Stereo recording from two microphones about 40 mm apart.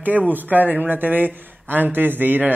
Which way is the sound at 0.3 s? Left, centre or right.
Right.